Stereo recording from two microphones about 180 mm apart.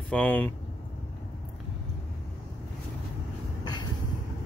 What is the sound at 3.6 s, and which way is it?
Train, 25° left (ahead or behind).